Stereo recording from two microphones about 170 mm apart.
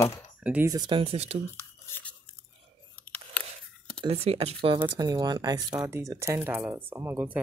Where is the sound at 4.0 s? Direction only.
35° right (ahead or behind); by 7.3 s 10° right (ahead or behind).